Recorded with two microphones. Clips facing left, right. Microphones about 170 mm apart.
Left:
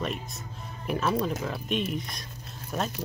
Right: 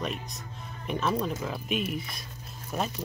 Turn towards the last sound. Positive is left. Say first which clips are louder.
# even
turn(degrees=0)  # may be behind; listen again after turning